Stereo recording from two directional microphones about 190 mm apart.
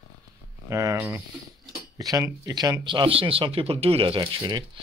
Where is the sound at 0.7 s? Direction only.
15° right (ahead or behind).